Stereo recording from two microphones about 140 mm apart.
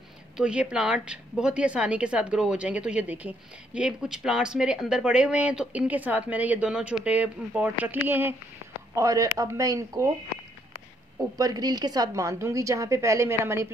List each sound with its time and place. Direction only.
0.4 s a woman's voice: 5° right (ahead or behind)
11.3 s a woman's voice: 30° right (ahead or behind)